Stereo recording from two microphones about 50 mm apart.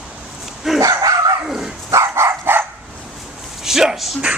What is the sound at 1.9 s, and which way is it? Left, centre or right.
Dog, right.